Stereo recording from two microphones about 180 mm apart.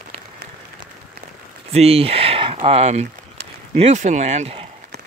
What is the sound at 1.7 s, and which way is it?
Speech, 35° right (ahead or behind).